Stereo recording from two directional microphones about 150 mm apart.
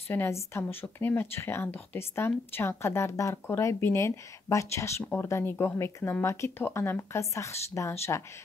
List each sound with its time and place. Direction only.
0.1 s speech: 15° left (ahead or behind)